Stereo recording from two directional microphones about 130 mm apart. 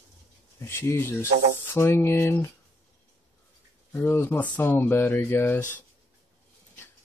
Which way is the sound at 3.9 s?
15° left (ahead or behind).